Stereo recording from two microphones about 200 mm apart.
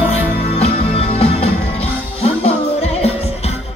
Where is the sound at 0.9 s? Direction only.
30° left (ahead or behind).